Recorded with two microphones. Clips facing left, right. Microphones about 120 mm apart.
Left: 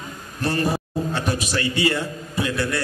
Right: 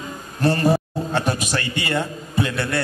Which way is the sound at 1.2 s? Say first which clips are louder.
Right 5 dB; 40° right (ahead or behind).